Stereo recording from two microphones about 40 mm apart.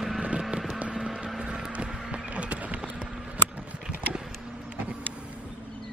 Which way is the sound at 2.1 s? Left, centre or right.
Right.